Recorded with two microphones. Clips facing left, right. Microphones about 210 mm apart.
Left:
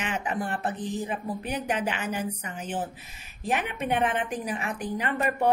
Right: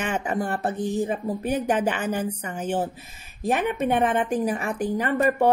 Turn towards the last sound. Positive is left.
turn(degrees=-45)  # may be behind; listen again after turning